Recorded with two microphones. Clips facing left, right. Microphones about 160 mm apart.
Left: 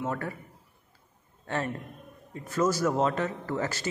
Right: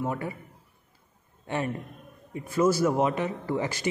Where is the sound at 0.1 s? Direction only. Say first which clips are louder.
Right 1 dB; 10° right (ahead or behind).